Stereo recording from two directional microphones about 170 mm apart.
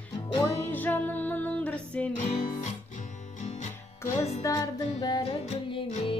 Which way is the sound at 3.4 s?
40° left (ahead or behind).